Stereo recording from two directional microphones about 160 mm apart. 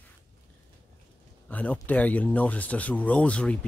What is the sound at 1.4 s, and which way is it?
Speech, 10° left (ahead or behind).